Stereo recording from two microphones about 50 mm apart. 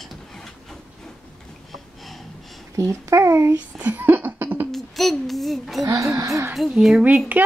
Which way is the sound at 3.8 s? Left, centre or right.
Right.